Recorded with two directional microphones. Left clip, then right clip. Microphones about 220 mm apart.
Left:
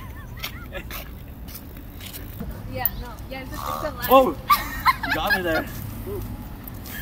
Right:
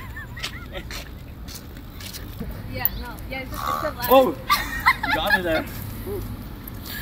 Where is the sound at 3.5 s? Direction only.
15° left (ahead or behind).